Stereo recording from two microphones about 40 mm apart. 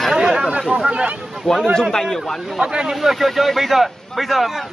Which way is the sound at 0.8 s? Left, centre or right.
Right.